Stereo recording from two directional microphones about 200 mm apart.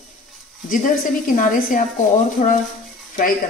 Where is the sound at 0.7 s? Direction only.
40° left (ahead or behind).